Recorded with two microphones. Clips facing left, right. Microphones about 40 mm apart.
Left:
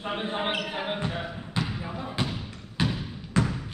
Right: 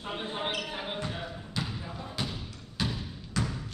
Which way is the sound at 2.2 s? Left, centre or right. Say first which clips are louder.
Left 5 dB; left.